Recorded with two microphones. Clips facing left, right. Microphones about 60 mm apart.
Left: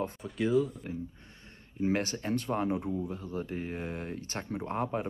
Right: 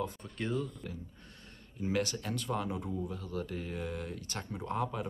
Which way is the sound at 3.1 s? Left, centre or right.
Left.